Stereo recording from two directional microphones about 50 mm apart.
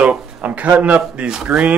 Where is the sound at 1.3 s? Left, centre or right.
Centre.